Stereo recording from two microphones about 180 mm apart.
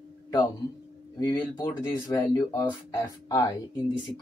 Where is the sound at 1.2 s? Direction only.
25° left (ahead or behind).